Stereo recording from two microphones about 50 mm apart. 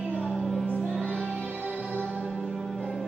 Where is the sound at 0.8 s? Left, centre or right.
Centre.